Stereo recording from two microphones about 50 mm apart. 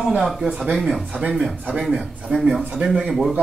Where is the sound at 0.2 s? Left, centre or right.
Centre.